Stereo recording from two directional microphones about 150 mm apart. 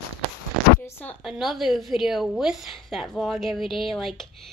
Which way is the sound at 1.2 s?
Centre (ahead or behind).